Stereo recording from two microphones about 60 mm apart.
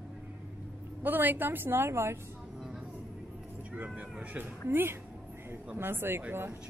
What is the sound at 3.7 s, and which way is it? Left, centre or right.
Speech, right.